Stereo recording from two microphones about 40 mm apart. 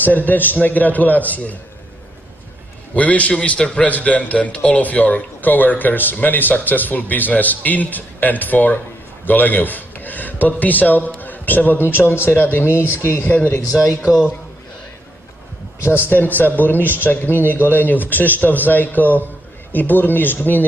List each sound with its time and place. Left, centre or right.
0.0 s a man's voice: left
2.9 s a man's voice: left
3.3 s a man's voice: left
3.8 s a man's voice: left
13.2 s a man's voice: left
16.1 s a man's voice: left